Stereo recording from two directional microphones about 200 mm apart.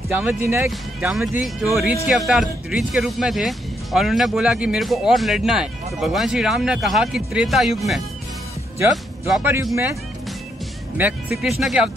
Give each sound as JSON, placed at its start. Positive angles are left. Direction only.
{"t": 0.1, "sound": "speech", "side_deg": -10}
{"t": 9.3, "sound": "speech", "side_deg": -5}
{"t": 11.0, "sound": "speech", "side_deg": -10}